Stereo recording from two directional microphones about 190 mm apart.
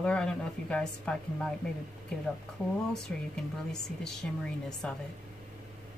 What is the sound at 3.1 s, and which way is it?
Speech, 5° left (ahead or behind).